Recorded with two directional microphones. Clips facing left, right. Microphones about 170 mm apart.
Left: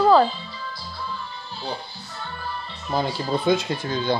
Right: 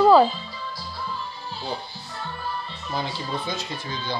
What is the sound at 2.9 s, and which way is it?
Speech, 55° left (ahead or behind).